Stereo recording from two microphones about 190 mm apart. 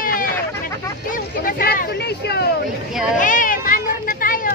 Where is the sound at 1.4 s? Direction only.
50° left (ahead or behind).